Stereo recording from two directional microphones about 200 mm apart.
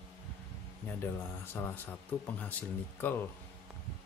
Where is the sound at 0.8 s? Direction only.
10° left (ahead or behind).